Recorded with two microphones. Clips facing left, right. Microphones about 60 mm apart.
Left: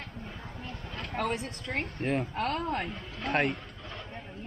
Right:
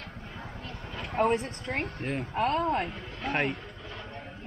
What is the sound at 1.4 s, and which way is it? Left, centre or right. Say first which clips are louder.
Speech: right 2 dB; centre.